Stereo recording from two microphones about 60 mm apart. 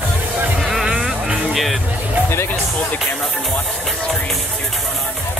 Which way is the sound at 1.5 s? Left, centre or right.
Centre.